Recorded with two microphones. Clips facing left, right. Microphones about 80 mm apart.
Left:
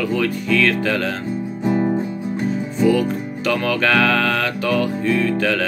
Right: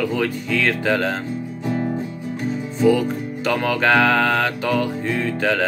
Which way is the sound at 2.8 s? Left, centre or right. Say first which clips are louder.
Even; right.